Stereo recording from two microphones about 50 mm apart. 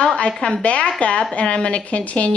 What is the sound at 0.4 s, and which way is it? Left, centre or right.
A woman's voice, left.